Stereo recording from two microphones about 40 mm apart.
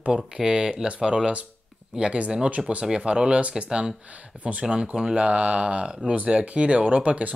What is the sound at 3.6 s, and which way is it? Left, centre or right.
Speech, centre.